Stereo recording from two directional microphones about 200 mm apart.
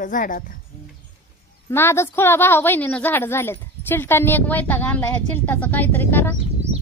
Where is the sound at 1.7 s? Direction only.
10° left (ahead or behind).